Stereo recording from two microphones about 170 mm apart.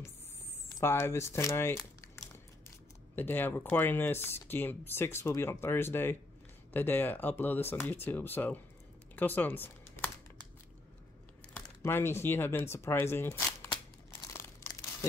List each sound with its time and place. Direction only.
0.7 s speech: 15° left (ahead or behind)
3.2 s speech: 10° left (ahead or behind)
9.1 s typing: 10° left (ahead or behind)
11.5 s speech: 10° left (ahead or behind)
14.1 s crumpling: 15° left (ahead or behind)